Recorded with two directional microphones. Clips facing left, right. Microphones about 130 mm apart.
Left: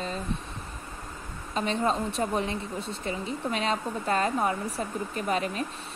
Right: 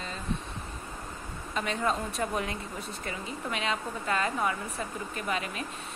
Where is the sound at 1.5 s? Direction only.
30° left (ahead or behind).